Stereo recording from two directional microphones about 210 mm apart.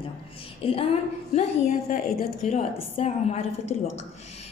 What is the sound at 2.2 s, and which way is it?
A woman's voice, 35° left (ahead or behind).